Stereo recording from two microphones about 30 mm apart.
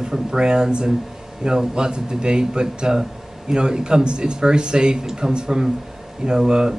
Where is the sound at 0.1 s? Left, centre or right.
Right.